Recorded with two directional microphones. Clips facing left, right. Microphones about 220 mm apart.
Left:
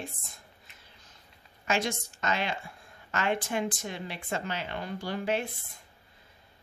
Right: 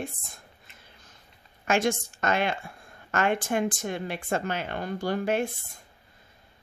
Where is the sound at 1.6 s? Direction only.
50° right (ahead or behind).